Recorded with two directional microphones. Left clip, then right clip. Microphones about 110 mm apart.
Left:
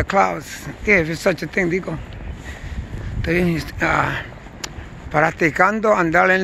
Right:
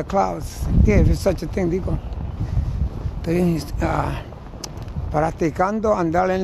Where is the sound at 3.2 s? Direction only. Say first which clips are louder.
Left 2 dB; 25° right (ahead or behind).